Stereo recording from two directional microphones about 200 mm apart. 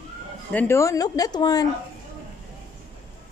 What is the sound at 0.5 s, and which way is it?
Speech, 10° left (ahead or behind).